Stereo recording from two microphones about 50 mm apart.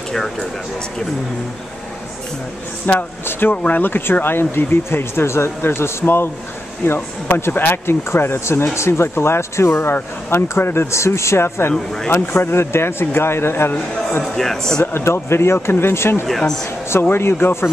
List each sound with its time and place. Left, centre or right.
0.1 s speech: centre
2.9 s speech: left
5.6 s speech: left
14.3 s speech: centre
14.9 s speech: left
16.3 s speech: centre
17.1 s speech: left